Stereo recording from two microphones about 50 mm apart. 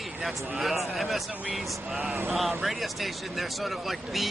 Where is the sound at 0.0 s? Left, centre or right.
Centre.